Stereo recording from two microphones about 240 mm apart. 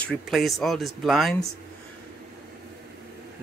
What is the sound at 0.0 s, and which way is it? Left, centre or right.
A man's voice, centre.